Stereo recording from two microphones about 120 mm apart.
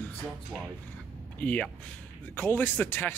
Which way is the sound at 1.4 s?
10° left (ahead or behind).